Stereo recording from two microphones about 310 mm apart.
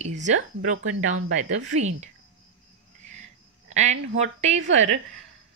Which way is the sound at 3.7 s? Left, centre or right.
Right.